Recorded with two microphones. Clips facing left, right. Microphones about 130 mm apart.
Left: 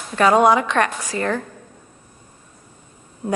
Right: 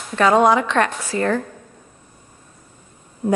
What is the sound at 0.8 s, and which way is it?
Speech, 15° left (ahead or behind).